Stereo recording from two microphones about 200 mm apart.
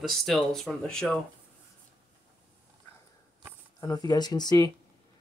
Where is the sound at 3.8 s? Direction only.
20° left (ahead or behind).